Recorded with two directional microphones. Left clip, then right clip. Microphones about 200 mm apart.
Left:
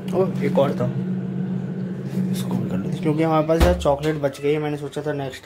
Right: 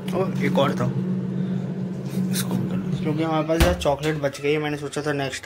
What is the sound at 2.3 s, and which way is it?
Speech, 10° left (ahead or behind).